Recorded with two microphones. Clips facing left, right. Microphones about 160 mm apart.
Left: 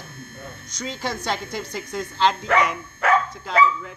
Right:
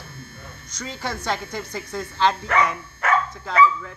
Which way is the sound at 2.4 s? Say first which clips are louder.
Left 1 dB; 70° left (ahead or behind).